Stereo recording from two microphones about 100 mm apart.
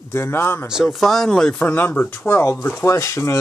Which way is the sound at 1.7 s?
20° left (ahead or behind).